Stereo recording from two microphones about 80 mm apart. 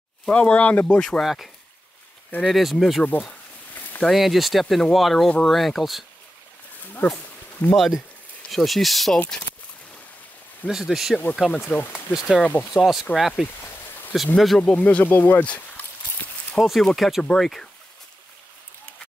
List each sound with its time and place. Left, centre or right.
0.2 s speech: centre
1.2 s speech: centre
3.1 s a sound: left
4.0 s speech: centre
6.9 s speech: left
7.7 s speech: centre
10.7 s speech: centre
11.6 s speech: left
12.1 s speech: centre
14.6 s speech: centre
16.5 s speech: centre